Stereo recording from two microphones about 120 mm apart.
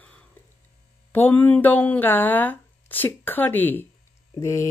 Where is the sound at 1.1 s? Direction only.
15° left (ahead or behind).